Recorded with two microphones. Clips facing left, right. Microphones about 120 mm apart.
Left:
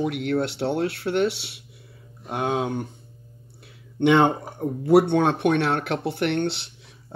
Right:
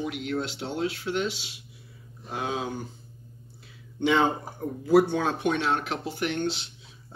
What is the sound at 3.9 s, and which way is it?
Speech, 65° left (ahead or behind).